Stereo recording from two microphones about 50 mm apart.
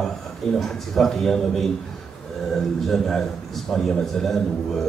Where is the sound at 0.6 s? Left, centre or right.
Centre.